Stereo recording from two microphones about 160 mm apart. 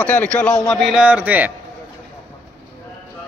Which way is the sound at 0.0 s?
10° left (ahead or behind).